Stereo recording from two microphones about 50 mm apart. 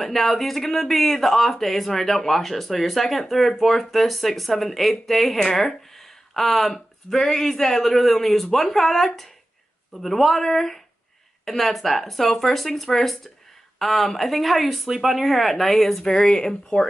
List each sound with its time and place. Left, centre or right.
0.0 s speech: centre